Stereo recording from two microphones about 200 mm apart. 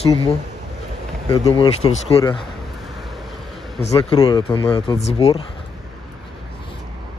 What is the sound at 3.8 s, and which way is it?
Speech, 30° left (ahead or behind).